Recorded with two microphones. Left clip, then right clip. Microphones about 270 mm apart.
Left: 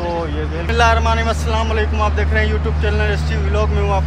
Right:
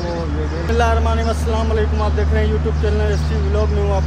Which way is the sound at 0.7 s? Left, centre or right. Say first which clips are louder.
Left 4 dB; centre.